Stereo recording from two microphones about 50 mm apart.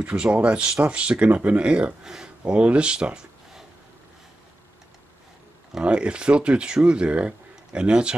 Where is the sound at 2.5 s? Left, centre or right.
Right.